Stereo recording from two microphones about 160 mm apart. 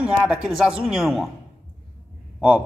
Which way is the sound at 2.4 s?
5° right (ahead or behind).